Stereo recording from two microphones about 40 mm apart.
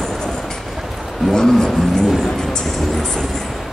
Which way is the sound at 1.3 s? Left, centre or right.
Centre.